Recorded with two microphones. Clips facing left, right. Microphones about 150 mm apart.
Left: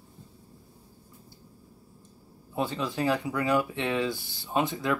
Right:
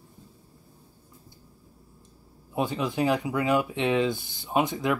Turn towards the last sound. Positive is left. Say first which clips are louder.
# right 2 dB
turn(degrees=-15)  # may be behind; listen again after turning